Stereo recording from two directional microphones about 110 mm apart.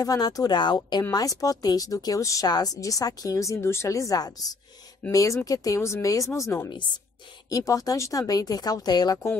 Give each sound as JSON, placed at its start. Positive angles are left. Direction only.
{"t": 0.0, "sound": "speech", "side_deg": 35}